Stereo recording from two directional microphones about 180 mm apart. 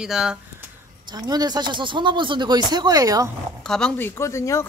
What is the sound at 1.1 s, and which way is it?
Speech, 20° right (ahead or behind).